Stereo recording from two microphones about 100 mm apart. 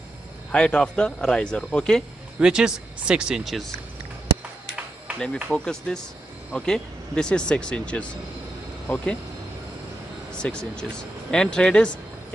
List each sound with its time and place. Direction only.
0.5 s speech: 10° left (ahead or behind)
2.4 s speech: 10° right (ahead or behind)
5.2 s speech: 10° left (ahead or behind)
10.3 s speech: 10° left (ahead or behind)